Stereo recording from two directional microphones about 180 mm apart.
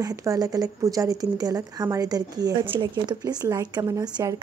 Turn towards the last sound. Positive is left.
turn(degrees=-20)  # may be behind; listen again after turning